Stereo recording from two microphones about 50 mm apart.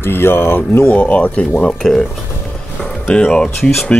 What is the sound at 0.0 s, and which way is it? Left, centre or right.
Speech, left.